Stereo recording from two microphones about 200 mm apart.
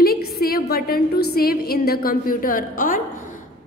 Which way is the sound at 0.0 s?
50° left (ahead or behind).